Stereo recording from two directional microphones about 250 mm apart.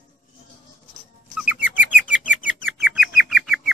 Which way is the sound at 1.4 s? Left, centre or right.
Centre.